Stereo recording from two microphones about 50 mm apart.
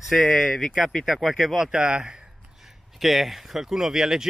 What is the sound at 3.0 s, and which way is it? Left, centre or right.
Speech, centre.